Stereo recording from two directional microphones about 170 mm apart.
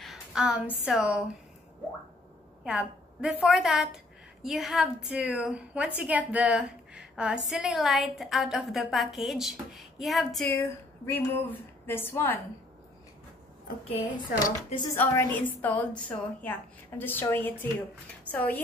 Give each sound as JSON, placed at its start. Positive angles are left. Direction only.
{"t": 0.0, "sound": "a sound", "side_deg": -5}
{"t": 0.8, "sound": "a woman's voice", "side_deg": -5}
{"t": 2.6, "sound": "a woman's voice", "side_deg": -5}
{"t": 10.5, "sound": "a woman's voice", "side_deg": 15}
{"t": 14.4, "sound": "speech", "side_deg": 25}
{"t": 15.0, "sound": "a woman's voice", "side_deg": 10}